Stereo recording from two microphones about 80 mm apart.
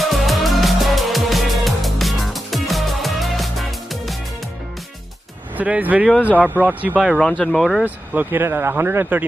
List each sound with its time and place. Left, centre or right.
0.0 s music: centre
5.6 s speech: right
7.2 s speech: centre
7.8 s speech: right